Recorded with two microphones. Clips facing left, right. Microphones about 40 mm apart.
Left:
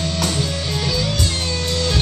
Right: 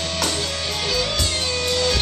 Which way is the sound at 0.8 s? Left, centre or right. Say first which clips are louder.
Even; centre.